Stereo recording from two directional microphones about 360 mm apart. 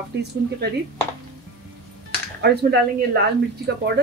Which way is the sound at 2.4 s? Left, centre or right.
Right.